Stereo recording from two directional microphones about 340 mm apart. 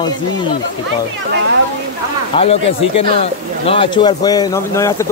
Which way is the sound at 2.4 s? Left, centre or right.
Centre.